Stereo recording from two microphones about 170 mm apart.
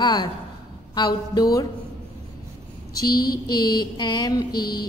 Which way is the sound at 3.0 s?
25° left (ahead or behind).